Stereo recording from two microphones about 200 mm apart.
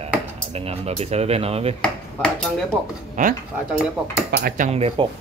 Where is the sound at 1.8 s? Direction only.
5° left (ahead or behind).